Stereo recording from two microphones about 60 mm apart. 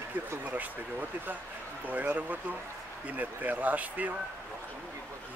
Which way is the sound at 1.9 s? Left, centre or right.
Right.